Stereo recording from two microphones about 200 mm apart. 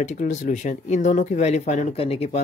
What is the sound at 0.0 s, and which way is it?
Speech, 35° left (ahead or behind).